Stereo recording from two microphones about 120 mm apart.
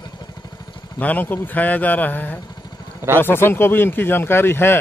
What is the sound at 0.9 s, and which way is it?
Speech, 15° left (ahead or behind).